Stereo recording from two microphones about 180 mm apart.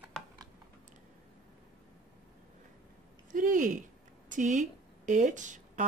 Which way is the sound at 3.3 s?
45° right (ahead or behind).